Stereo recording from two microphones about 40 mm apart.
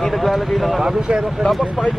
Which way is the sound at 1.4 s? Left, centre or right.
Left.